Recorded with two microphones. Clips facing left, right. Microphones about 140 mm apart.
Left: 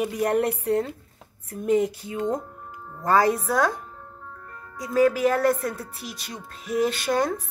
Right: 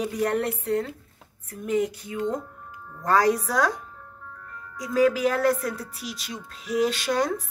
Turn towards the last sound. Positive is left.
turn(degrees=0)  # may be behind; listen again after turning